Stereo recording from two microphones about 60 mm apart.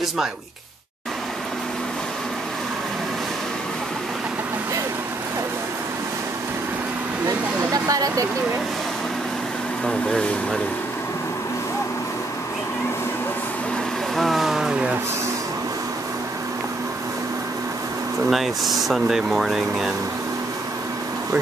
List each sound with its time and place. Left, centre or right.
7.2 s speech: right
9.8 s speech: centre
14.1 s a sound: centre
18.3 s speech: centre